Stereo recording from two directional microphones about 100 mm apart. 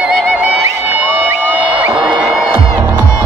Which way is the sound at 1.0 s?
20° right (ahead or behind).